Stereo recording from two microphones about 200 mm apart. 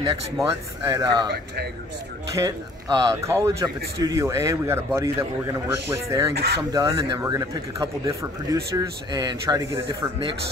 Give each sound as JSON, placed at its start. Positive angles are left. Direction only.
{"t": 0.2, "sound": "speech", "side_deg": -20}
{"t": 2.3, "sound": "speech", "side_deg": -15}
{"t": 6.3, "sound": "speech", "side_deg": -55}
{"t": 6.7, "sound": "speech", "side_deg": -15}